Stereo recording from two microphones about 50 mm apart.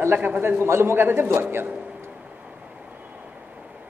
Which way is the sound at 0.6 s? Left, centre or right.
Right.